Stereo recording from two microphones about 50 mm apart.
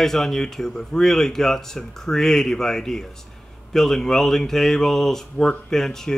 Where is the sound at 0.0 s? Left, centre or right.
Centre.